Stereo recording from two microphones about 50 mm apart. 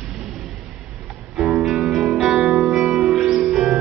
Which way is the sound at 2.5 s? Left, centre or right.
Centre.